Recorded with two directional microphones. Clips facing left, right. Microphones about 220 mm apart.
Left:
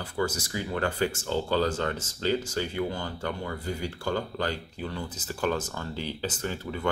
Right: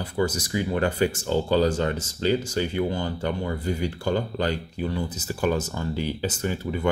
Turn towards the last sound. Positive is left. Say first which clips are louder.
# right 5 dB
turn(degrees=-10)  # may be behind; listen again after turning